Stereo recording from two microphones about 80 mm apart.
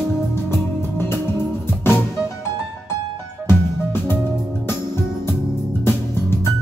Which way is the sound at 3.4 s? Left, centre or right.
Left.